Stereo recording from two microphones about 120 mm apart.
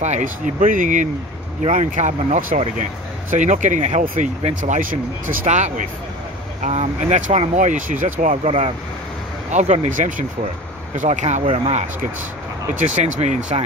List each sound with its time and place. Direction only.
0.0 s speech: 80° right
5.5 s speech: 85° right
6.6 s speech: 70° right (ahead or behind)
9.5 s speech: 80° right
11.4 s speech: 55° right (ahead or behind)
12.7 s speech: 80° right